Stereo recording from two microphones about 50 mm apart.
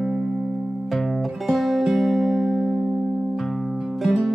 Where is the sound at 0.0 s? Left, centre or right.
Centre.